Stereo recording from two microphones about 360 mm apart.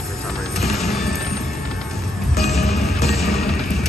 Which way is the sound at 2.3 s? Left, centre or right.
Centre.